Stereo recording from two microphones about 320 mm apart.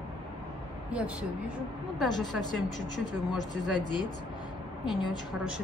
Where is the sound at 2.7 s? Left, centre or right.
Right.